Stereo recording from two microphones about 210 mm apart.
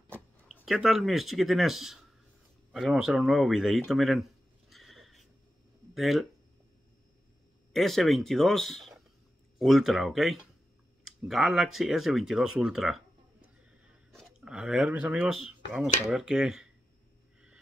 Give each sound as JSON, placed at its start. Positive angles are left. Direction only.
{"t": 0.1, "sound": "speech", "side_deg": 0}
{"t": 7.7, "sound": "speech", "side_deg": 0}
{"t": 14.1, "sound": "speech", "side_deg": -5}